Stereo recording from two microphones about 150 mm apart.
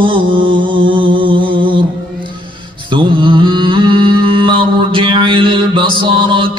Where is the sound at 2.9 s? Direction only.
35° right (ahead or behind).